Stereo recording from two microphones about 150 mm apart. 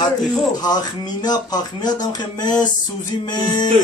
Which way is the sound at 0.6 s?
25° left (ahead or behind).